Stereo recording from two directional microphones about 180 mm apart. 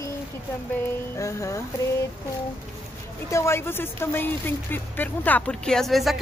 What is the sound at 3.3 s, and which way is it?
Speech, 15° left (ahead or behind).